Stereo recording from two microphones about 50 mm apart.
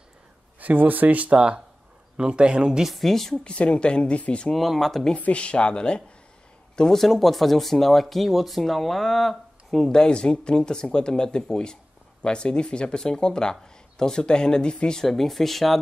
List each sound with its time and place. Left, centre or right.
0.6 s a man's voice: right; by 2.8 s centre
2.8 s speech: centre
3.4 s speech: left
4.5 s speech: centre
5.1 s speech: left
6.8 s speech: centre
15.0 s speech: centre